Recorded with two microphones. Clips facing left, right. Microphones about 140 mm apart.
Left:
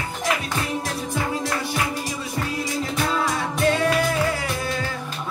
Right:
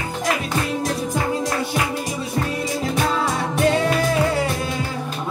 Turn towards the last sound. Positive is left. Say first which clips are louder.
# right 2 dB
turn(degrees=-25)  # may be behind; listen again after turning